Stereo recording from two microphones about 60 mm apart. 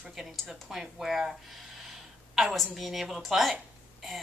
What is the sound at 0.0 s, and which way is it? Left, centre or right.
Speech, centre.